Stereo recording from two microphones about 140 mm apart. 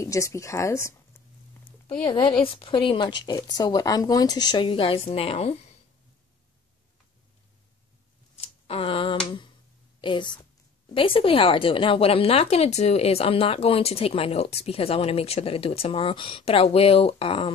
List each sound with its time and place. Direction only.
0.0 s speech: 20° left (ahead or behind)
1.9 s speech: 35° left (ahead or behind)
8.4 s a sound: 45° left (ahead or behind)
9.9 s a woman's voice: 35° left (ahead or behind)